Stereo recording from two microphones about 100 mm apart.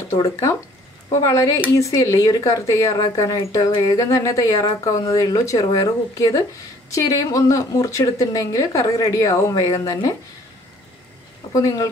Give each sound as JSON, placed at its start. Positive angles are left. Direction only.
{"t": 0.1, "sound": "speech", "side_deg": 35}
{"t": 11.5, "sound": "speech", "side_deg": 35}